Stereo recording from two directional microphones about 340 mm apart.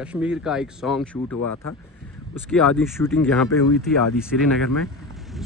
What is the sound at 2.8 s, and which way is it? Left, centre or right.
Speech, centre.